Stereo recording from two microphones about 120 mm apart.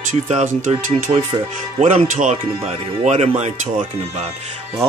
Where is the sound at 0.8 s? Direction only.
90° right.